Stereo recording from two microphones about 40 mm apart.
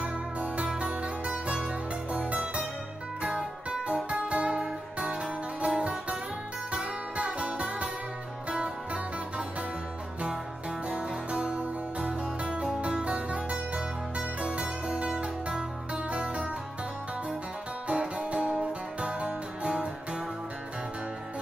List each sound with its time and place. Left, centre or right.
0.0 s music: right
3.3 s guitar: centre
3.9 s guitar: right
5.0 s music: right
10.9 s music: right
17.8 s music: right